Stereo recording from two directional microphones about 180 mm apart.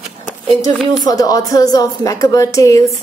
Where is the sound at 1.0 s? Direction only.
20° left (ahead or behind).